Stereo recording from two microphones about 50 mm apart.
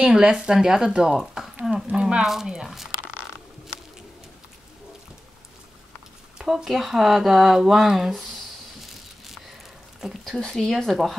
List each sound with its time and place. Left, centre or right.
0.0 s speech: centre
2.2 s speech: centre
6.3 s speech: centre
10.2 s speech: centre